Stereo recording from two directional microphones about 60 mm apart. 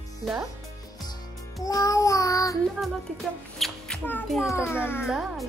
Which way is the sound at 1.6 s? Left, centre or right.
Left.